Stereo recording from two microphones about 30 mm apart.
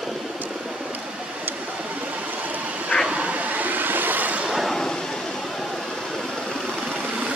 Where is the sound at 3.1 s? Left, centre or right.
Right.